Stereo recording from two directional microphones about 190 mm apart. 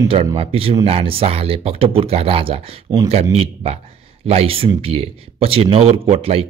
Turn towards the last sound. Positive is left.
turn(degrees=-30)  # may be behind; listen again after turning